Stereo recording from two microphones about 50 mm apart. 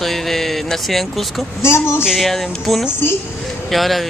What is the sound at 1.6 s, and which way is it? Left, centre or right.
Speech, left.